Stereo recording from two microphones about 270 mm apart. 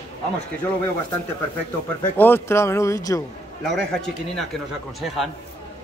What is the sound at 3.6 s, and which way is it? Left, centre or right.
Speech, centre.